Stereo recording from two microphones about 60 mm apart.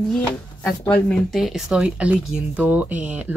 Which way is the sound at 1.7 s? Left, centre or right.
Centre.